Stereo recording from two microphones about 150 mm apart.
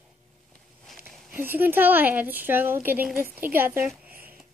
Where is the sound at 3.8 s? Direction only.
5° right (ahead or behind).